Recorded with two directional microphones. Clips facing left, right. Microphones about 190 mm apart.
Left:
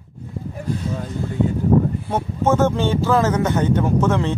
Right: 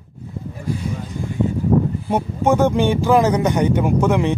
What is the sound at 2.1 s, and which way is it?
Speech, 15° right (ahead or behind).